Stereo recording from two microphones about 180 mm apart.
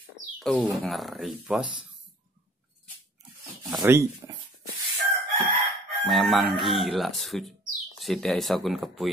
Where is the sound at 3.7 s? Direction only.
15° right (ahead or behind).